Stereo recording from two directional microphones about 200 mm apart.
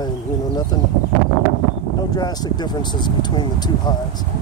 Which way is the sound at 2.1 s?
20° left (ahead or behind).